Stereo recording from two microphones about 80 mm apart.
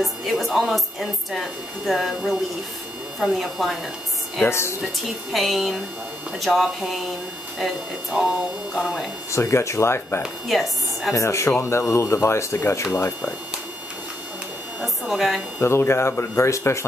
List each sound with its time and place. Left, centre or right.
0.0 s a woman's voice: centre
4.4 s speech: left
5.3 s a woman's voice: centre
9.3 s speech: left
10.2 s a woman's voice: centre
11.1 s speech: left
12.9 s speech: left
14.8 s a woman's voice: centre
15.6 s speech: left